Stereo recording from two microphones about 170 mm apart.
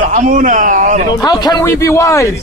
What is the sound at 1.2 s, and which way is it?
Speech, 25° left (ahead or behind).